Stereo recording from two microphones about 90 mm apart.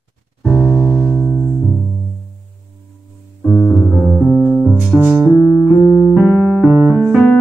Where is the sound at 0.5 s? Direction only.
Centre (ahead or behind).